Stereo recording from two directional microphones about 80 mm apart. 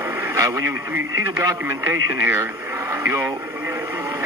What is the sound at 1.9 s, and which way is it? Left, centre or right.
Speech, right.